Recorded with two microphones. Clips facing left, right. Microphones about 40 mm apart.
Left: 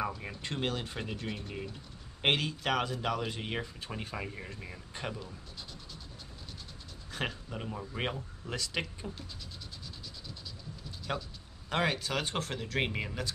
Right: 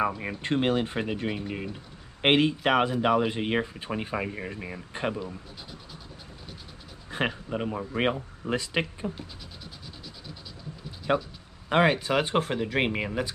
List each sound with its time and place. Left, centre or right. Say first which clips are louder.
0.0 s speech: right 8 dB; right
7.1 s speech: right 8 dB; right
11.1 s speech: right 11 dB; right